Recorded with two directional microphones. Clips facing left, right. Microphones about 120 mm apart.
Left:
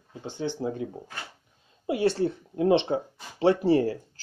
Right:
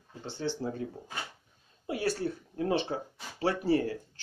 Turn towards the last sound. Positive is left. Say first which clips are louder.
# left 5 dB
turn(degrees=30)  # may be behind; listen again after turning